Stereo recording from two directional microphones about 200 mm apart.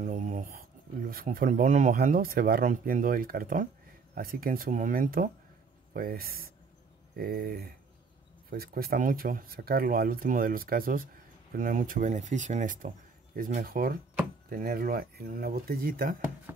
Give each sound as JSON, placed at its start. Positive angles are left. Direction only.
{"t": 0.0, "sound": "speech", "side_deg": -40}